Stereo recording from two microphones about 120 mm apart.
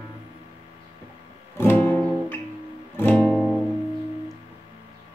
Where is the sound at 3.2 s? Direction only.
5° left (ahead or behind).